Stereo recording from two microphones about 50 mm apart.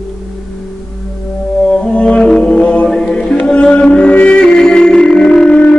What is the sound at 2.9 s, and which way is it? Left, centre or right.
Chant, centre.